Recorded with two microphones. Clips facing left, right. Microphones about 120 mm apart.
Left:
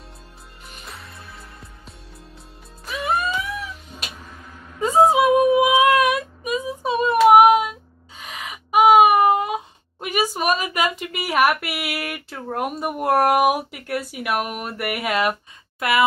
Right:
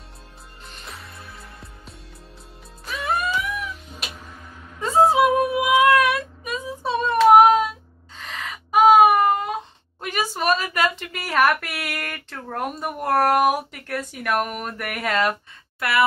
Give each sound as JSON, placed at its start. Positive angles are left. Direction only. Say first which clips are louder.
{"t": 0.8, "sound": "music", "louder": "even", "side_deg": 0}
{"t": 3.3, "sound": "music", "louder": "even", "side_deg": 30}
{"t": 4.7, "sound": "female singing", "louder": "left 1 dB", "side_deg": 15}
{"t": 8.2, "sound": "a sound", "louder": "right 1 dB", "side_deg": 15}